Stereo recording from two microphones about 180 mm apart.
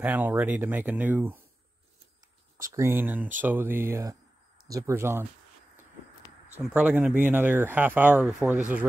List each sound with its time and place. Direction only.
0.0 s speech: 10° right (ahead or behind)
2.7 s speech: 15° right (ahead or behind)
6.6 s speech: 10° right (ahead or behind)